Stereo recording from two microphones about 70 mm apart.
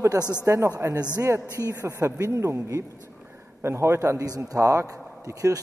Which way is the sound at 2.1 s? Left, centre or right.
Right.